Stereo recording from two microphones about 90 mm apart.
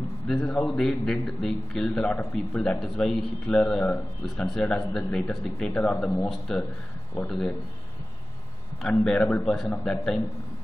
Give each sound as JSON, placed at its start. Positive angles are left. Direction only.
{"t": 0.5, "sound": "a man's voice", "side_deg": 10}
{"t": 4.5, "sound": "speech", "side_deg": 5}
{"t": 5.7, "sound": "a man's voice", "side_deg": 15}
{"t": 8.8, "sound": "a man's voice", "side_deg": 10}